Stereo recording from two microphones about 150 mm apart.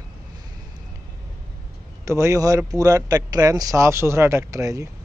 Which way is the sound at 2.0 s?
20° right (ahead or behind).